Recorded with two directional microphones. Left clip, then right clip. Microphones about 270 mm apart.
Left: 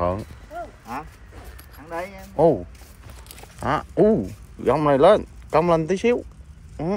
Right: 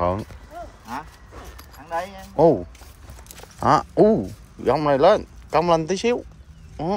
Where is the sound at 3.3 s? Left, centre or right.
Centre.